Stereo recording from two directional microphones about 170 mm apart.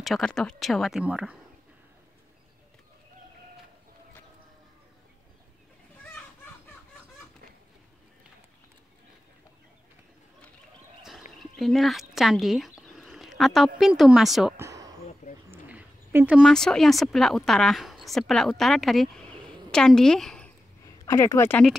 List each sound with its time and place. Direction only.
0.0 s speech: centre (ahead or behind)
11.0 s a sound: centre (ahead or behind)
11.3 s speech: centre (ahead or behind)
14.6 s a sound: 20° right (ahead or behind)
15.5 s a woman's voice: 10° right (ahead or behind); by 20.5 s 5° left (ahead or behind)
20.8 s speech: 20° left (ahead or behind)